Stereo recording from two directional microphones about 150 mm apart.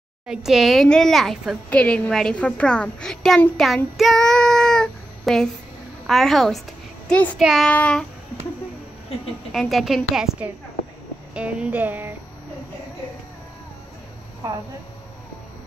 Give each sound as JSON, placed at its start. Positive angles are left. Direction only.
{"t": 0.3, "sound": "a child's voice", "side_deg": -5}
{"t": 9.5, "sound": "a child's voice", "side_deg": 0}
{"t": 11.3, "sound": "speech", "side_deg": -5}
{"t": 14.4, "sound": "speech", "side_deg": -20}